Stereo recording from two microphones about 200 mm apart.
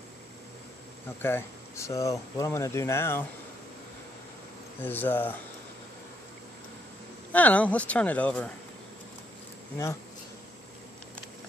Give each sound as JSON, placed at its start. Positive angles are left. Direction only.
{"t": 1.2, "sound": "speech", "side_deg": 15}
{"t": 4.8, "sound": "speech", "side_deg": 10}
{"t": 7.3, "sound": "speech", "side_deg": 5}